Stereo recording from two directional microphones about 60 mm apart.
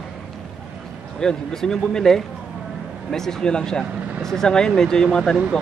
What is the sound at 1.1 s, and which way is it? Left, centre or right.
Speech, centre.